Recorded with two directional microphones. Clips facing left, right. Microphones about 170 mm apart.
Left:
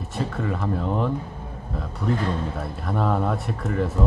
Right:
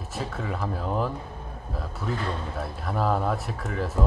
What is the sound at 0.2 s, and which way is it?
Speech, centre (ahead or behind).